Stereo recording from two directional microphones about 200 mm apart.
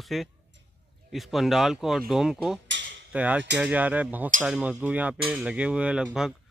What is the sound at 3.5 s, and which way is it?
Speech, 5° right (ahead or behind).